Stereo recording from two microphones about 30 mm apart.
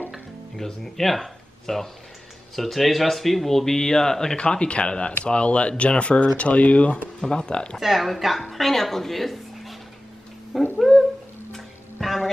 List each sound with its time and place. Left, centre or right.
0.6 s speech: centre
4.4 s speech: left
7.2 s speech: left
7.8 s speech: centre
10.8 s dog: centre
11.5 s music: centre